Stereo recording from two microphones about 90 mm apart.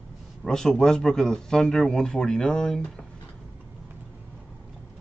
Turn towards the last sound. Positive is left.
turn(degrees=5)  # may be behind; listen again after turning